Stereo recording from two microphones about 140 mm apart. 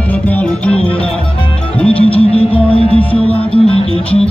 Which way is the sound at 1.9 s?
40° left (ahead or behind).